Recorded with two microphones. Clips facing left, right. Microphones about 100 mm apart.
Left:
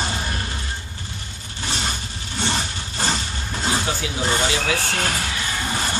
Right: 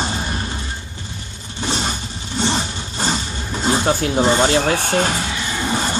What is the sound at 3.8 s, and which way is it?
Speech, 50° right (ahead or behind).